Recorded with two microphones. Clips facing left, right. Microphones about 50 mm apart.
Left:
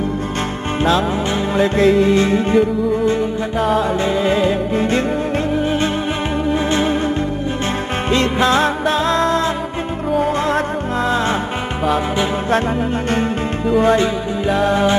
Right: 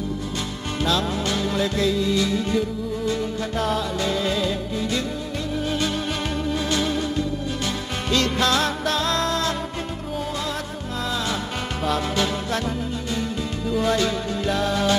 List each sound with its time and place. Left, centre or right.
1.6 s music: left
3.1 s music: left
6.7 s music: left
8.1 s music: left
11.8 s music: left
13.7 s music: left